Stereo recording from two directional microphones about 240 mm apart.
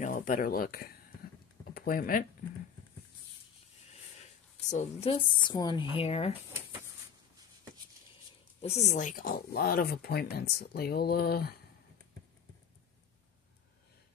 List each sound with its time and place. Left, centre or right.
0.0 s speech: left
4.6 s a woman's voice: left
8.5 s speech: left